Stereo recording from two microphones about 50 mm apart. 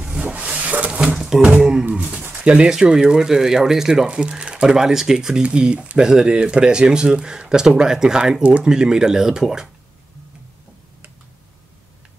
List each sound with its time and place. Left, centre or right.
0.3 s wood: right
1.1 s a sound: centre
1.4 s speech: right
8.4 s speech: right
8.6 s speech: centre